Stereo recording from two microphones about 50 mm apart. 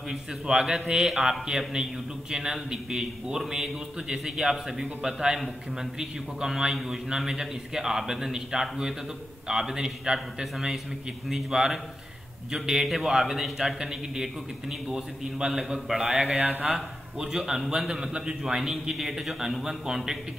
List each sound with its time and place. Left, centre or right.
0.1 s a man's voice: centre
2.3 s a man's voice: centre
16.3 s speech: right
16.6 s a man's voice: centre